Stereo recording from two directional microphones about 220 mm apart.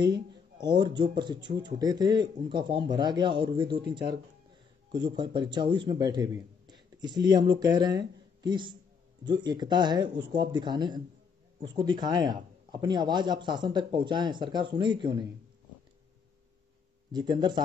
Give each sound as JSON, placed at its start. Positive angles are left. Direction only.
{"t": 0.0, "sound": "a man's voice", "side_deg": -20}
{"t": 17.1, "sound": "speech", "side_deg": -20}